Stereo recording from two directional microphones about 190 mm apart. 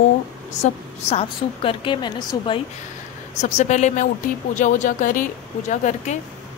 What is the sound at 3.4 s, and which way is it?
A woman's voice, 40° left (ahead or behind).